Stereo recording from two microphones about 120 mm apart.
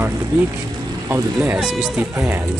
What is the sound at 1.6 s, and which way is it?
Speech, 5° right (ahead or behind).